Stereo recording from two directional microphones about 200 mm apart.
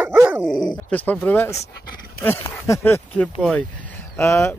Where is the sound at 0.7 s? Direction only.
10° left (ahead or behind).